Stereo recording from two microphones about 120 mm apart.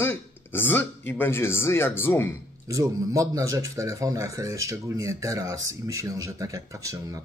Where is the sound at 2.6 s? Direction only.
25° right (ahead or behind).